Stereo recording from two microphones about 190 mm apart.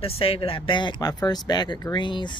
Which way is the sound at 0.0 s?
30° left (ahead or behind).